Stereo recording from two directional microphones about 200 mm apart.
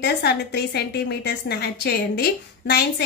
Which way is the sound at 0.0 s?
55° left (ahead or behind).